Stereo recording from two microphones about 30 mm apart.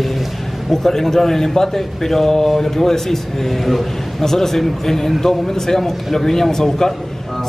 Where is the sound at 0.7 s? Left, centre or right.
Centre.